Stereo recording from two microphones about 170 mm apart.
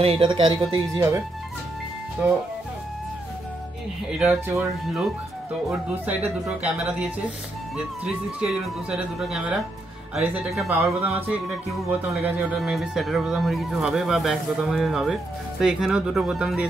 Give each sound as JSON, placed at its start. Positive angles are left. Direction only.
{"t": 0.0, "sound": "speech", "side_deg": -30}
{"t": 4.2, "sound": "speech", "side_deg": -5}